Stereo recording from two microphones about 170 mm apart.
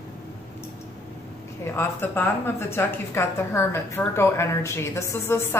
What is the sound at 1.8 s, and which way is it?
A woman's voice, 15° left (ahead or behind).